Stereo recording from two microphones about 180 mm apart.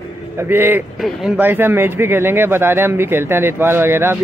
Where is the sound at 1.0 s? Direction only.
Centre (ahead or behind).